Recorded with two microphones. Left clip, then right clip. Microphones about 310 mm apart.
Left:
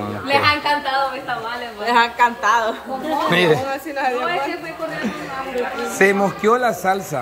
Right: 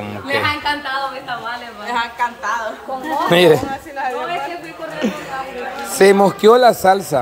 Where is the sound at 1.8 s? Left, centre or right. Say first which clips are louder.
Left 5 dB; left.